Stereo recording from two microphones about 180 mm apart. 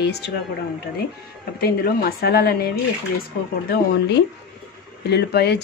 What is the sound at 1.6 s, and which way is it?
Speech, 60° left (ahead or behind).